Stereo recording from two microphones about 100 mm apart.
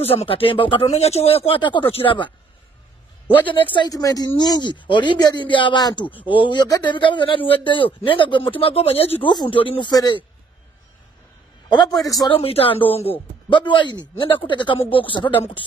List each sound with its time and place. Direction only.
0.0 s speech: 75° left (ahead or behind)
3.7 s speech: 50° left (ahead or behind)
4.0 s a man's voice: 35° left (ahead or behind); by 9.3 s 75° left (ahead or behind)
9.3 s speech: 45° left (ahead or behind)
9.6 s a man's voice: 65° left (ahead or behind)
9.8 s speech: 45° left (ahead or behind)
11.7 s a man's voice: 45° left (ahead or behind)
12.3 s speech: 75° left (ahead or behind)
13.5 s a man's voice: 55° left (ahead or behind)